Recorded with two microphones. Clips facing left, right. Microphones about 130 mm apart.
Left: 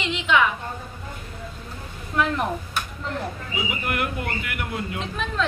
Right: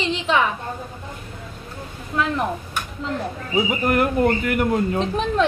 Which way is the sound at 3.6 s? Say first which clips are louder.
Right 8 dB; 40° right (ahead or behind).